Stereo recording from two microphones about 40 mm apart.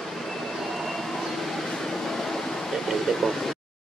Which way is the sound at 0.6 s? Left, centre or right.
Centre.